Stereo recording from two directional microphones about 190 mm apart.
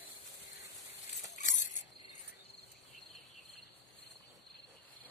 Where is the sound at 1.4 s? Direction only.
40° left (ahead or behind).